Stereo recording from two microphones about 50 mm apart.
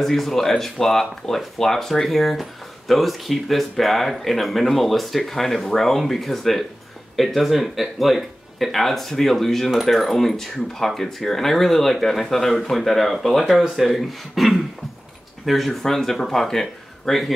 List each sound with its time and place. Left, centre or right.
0.0 s speech: centre